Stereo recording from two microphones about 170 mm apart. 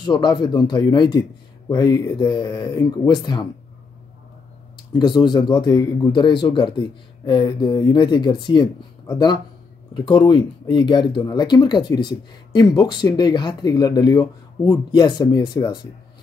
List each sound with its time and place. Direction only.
0.0 s speech: 25° left (ahead or behind)
4.9 s speech: 25° left (ahead or behind)